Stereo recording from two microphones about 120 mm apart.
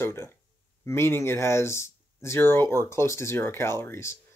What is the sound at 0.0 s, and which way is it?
Speech, 20° left (ahead or behind).